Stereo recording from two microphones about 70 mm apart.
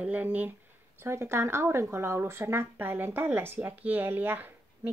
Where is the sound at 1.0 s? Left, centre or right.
Right.